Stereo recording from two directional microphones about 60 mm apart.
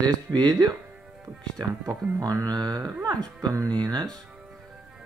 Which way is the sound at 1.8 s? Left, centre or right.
Right.